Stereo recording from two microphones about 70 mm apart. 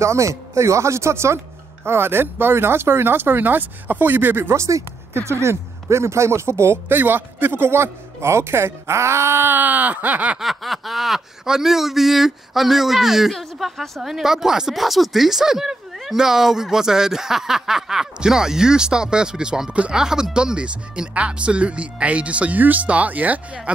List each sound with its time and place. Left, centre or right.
0.0 s speech: right
10.4 s speech: centre; by 23.7 s right